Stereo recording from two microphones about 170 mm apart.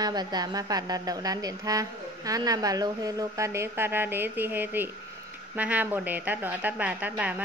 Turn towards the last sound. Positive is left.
turn(degrees=-10)  # may be behind; listen again after turning